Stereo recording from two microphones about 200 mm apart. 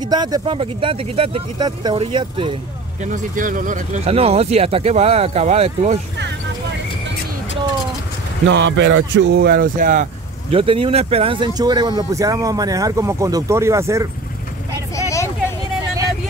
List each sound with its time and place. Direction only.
0.0 s speech: 20° right (ahead or behind)
3.0 s speech: 40° right (ahead or behind)
8.5 s speech: 65° right (ahead or behind); by 10.0 s 40° right (ahead or behind)
10.5 s speech: 25° right (ahead or behind)
15.0 s vehicle: 15° left (ahead or behind)